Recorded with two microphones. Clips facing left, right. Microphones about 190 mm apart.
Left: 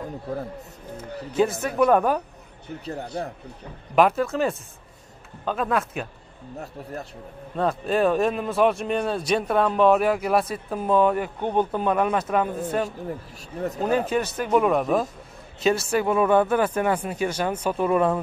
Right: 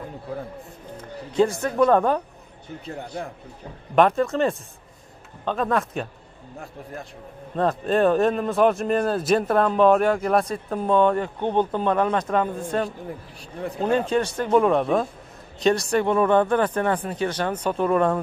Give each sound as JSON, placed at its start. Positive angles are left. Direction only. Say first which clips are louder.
{"t": 0.9, "sound": "speech", "louder": "right 2 dB", "side_deg": 5}
{"t": 2.8, "sound": "speech", "louder": "left 2 dB", "side_deg": 35}
{"t": 3.9, "sound": "speech", "louder": "right 1 dB", "side_deg": 5}
{"t": 6.6, "sound": "speech", "louder": "left 2 dB", "side_deg": 40}
{"t": 7.5, "sound": "speech", "louder": "right 2 dB", "side_deg": 0}
{"t": 13.7, "sound": "speech", "louder": "right 2 dB", "side_deg": 5}